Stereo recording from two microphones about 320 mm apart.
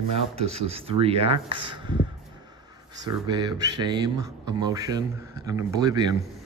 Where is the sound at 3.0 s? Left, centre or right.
Centre.